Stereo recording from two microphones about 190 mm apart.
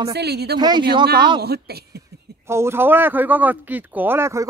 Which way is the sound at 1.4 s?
55° right (ahead or behind).